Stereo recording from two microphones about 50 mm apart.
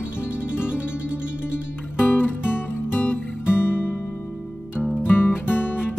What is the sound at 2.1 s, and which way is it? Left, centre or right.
Music, left.